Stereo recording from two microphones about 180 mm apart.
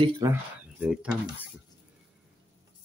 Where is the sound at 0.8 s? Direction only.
5° right (ahead or behind).